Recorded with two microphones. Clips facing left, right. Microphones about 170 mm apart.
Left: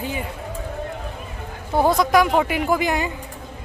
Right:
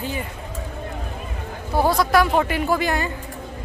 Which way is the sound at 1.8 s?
20° left (ahead or behind).